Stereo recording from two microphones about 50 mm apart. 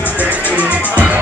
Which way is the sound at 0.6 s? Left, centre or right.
Right.